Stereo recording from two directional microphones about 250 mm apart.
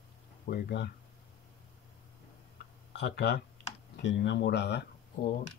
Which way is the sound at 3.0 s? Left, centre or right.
Left.